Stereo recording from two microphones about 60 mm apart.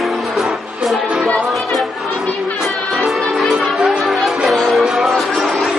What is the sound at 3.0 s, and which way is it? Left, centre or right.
Music, centre.